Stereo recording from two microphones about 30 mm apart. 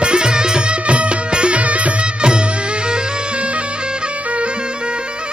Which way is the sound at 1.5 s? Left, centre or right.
Right.